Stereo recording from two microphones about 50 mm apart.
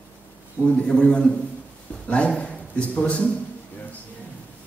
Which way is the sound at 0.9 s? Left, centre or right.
Left.